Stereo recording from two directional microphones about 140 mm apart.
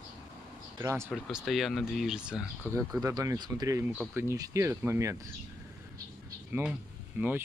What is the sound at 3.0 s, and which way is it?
Speech, 25° right (ahead or behind).